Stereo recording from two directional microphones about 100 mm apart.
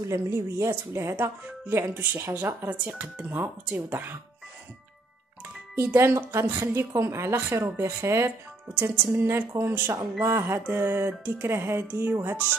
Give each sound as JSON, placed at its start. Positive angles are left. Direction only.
{"t": 0.0, "sound": "speech", "side_deg": -30}
{"t": 5.8, "sound": "speech", "side_deg": -25}